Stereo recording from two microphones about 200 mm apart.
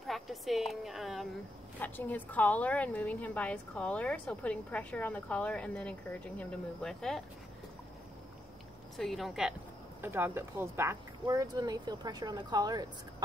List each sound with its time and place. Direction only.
0.0 s a woman's voice: centre (ahead or behind)
8.9 s speech: centre (ahead or behind); by 12.8 s 20° right (ahead or behind)